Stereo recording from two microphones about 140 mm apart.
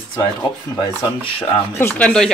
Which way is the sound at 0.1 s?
35° left (ahead or behind).